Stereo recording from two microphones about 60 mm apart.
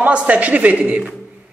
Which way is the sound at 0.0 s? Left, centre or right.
Right.